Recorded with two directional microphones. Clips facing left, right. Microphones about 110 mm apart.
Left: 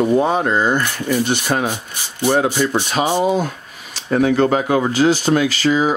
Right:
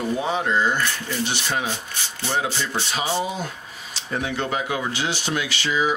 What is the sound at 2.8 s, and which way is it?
Speech, 55° left (ahead or behind).